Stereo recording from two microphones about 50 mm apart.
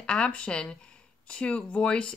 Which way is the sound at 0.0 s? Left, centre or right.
Left.